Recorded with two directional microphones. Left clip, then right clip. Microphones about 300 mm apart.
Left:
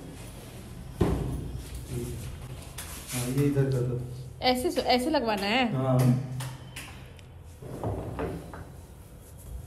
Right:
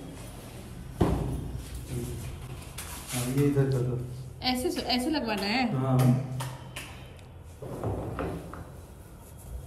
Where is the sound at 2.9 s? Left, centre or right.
Centre.